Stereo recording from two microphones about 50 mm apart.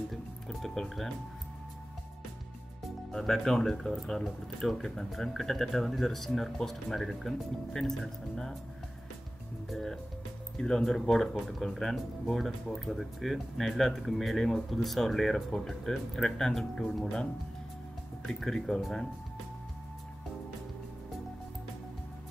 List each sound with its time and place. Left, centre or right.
0.1 s music: centre
3.1 s speech: centre
9.7 s speech: centre
18.3 s speech: centre